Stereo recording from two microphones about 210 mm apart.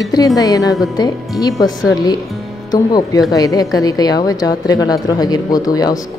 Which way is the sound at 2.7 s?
15° left (ahead or behind).